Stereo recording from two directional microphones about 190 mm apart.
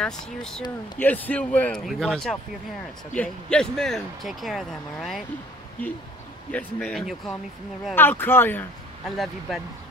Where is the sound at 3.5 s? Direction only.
5° left (ahead or behind).